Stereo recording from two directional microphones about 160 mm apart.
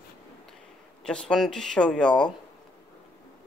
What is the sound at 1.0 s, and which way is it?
Speech, 5° left (ahead or behind).